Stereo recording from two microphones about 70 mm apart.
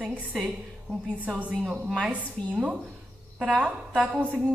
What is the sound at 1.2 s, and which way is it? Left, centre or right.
Speech, centre.